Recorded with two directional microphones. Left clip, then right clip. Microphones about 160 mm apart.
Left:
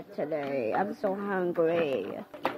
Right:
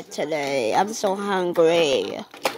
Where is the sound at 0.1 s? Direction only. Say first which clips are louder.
Right 7 dB; 20° right (ahead or behind).